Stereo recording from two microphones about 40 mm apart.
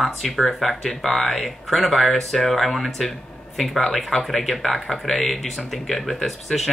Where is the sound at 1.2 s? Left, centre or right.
Left.